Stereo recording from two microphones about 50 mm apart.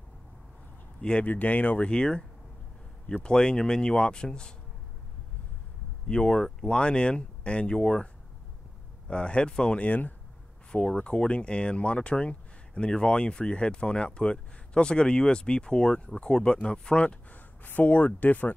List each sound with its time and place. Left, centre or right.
1.2 s speech: left
1.9 s speech: centre
6.0 s speech: centre; by 10.1 s left
10.9 s speech: left
17.6 s speech: left